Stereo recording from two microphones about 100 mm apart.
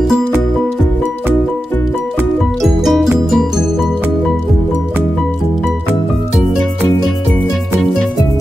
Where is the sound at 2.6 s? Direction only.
Centre (ahead or behind).